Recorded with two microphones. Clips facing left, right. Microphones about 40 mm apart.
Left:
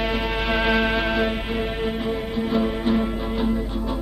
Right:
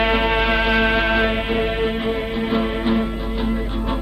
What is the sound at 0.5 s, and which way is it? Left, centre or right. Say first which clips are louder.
Music: right 3 dB; centre.